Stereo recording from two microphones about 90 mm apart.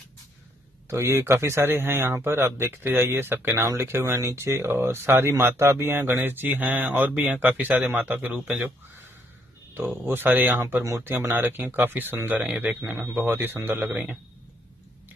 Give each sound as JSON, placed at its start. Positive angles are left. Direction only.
{"t": 0.8, "sound": "speech", "side_deg": -30}
{"t": 10.8, "sound": "speech", "side_deg": -35}
{"t": 11.1, "sound": "speech", "side_deg": -25}